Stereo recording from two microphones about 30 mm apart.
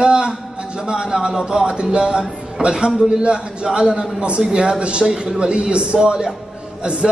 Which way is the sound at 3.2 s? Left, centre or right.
Right.